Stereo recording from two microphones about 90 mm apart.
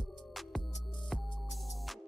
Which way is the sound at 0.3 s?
Centre (ahead or behind).